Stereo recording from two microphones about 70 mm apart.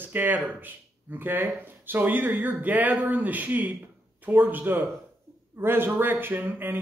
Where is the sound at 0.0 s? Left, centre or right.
Right.